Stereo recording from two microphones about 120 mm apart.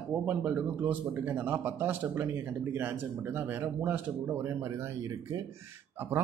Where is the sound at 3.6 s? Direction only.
20° right (ahead or behind).